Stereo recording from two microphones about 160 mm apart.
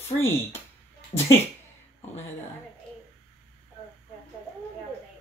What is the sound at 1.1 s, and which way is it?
Speech, 40° left (ahead or behind).